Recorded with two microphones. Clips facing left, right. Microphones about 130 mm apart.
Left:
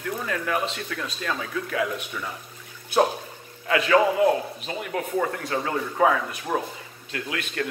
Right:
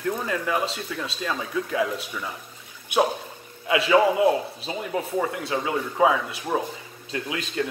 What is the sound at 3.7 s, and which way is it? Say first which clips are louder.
A man's voice: right 1 dB; 20° right (ahead or behind).